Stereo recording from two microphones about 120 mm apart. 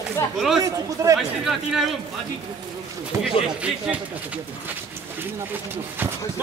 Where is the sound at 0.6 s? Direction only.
30° right (ahead or behind).